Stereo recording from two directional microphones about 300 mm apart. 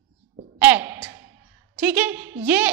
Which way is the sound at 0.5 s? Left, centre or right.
Centre.